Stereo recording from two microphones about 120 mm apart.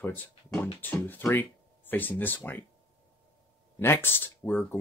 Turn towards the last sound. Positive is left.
turn(degrees=15)  # may be behind; listen again after turning